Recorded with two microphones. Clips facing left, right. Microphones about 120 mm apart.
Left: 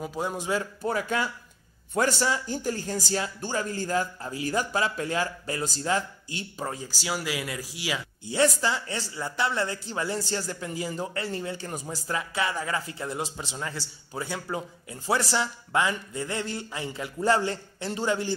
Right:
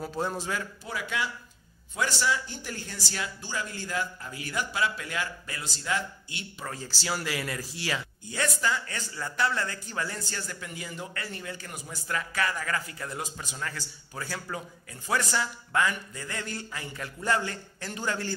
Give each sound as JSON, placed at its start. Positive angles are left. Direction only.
{"t": 0.0, "sound": "speech", "side_deg": 10}
{"t": 0.8, "sound": "speech", "side_deg": 45}
{"t": 6.7, "sound": "speech", "side_deg": 15}
{"t": 8.3, "sound": "a man's voice", "side_deg": 25}
{"t": 12.1, "sound": "a man's voice", "side_deg": 20}